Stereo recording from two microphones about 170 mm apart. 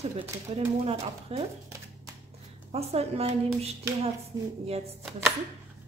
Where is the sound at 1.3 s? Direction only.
35° right (ahead or behind).